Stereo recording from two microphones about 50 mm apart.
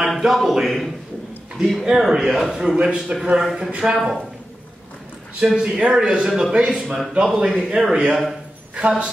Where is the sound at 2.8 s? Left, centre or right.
Right.